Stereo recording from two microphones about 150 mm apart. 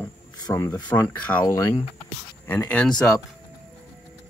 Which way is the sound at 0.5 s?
10° left (ahead or behind).